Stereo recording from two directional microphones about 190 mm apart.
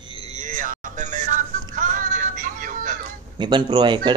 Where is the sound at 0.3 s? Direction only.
40° right (ahead or behind).